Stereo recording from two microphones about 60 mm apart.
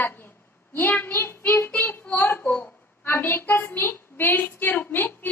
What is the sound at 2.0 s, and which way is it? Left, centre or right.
Child singing, left.